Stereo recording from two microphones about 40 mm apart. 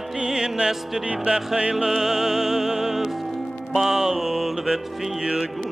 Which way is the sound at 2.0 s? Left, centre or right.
Centre.